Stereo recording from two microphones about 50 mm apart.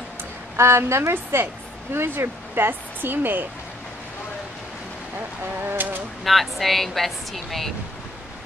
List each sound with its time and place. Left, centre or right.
0.6 s a woman's voice: right
1.3 s speech: right
5.6 s a sound: right
6.2 s a woman's voice: centre